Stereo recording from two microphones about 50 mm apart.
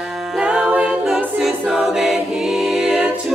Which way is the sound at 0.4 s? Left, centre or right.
Centre.